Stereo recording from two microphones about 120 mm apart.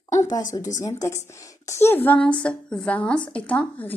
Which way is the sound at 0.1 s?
25° left (ahead or behind).